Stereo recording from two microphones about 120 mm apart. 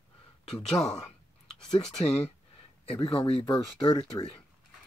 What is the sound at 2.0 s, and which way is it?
Speech, 65° left (ahead or behind).